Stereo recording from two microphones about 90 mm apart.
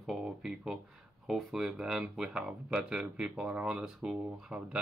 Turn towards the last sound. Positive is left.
turn(degrees=-10)  # may be behind; listen again after turning